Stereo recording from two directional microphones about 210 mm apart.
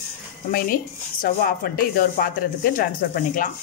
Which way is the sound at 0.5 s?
45° left (ahead or behind).